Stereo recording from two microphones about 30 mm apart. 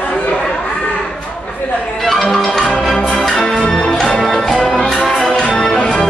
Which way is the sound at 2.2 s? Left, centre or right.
Centre.